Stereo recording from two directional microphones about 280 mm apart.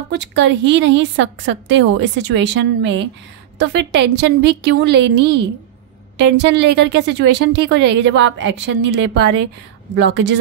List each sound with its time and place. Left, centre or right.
0.1 s speech: right